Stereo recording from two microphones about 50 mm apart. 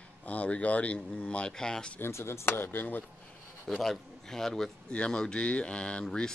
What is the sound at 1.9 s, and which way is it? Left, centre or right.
Speech, left.